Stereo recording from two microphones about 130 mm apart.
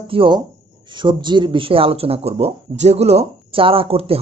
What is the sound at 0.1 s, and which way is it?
Speech, 40° right (ahead or behind).